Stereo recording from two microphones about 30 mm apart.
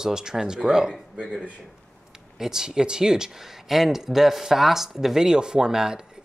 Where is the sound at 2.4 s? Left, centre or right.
Centre.